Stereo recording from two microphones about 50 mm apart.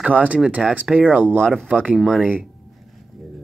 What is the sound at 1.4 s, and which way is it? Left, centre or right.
Speech, centre.